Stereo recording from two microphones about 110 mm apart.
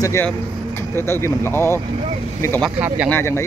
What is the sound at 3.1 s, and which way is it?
Speech, 25° left (ahead or behind).